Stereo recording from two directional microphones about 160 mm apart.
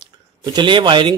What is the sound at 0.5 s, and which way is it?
Speech, 30° right (ahead or behind).